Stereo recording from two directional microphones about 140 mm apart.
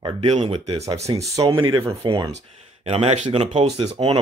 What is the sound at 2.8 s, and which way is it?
Speech, 50° right (ahead or behind).